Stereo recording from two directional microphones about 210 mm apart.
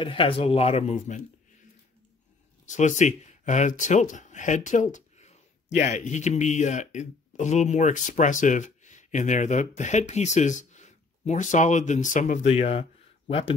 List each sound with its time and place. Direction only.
0.0 s speech: 25° left (ahead or behind)
2.6 s speech: 35° left (ahead or behind)